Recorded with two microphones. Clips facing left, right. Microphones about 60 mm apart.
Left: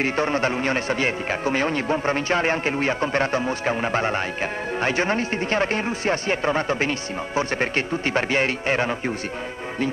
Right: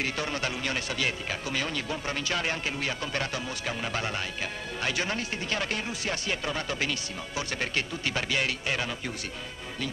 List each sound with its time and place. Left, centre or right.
0.0 s speech: left